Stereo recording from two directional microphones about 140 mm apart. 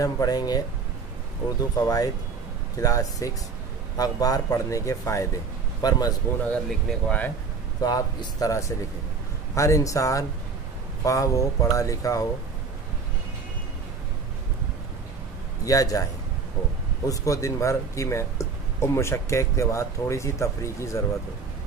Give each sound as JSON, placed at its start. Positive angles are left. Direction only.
{"t": 0.0, "sound": "a man's voice", "side_deg": 25}
{"t": 6.9, "sound": "speech", "side_deg": 10}
{"t": 7.8, "sound": "speech", "side_deg": 30}
{"t": 15.6, "sound": "speech", "side_deg": 25}
{"t": 17.1, "sound": "speech", "side_deg": 20}